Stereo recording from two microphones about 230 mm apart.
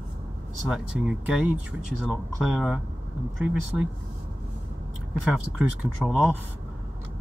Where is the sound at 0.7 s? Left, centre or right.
Centre.